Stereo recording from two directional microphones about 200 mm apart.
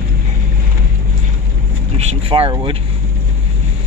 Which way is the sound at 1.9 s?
30° right (ahead or behind).